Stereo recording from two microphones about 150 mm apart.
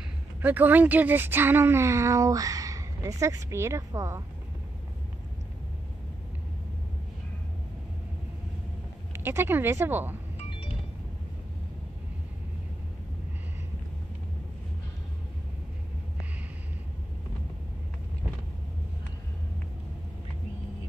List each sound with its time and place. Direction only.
0.4 s speech: 10° right (ahead or behind)
9.1 s speech: 15° right (ahead or behind)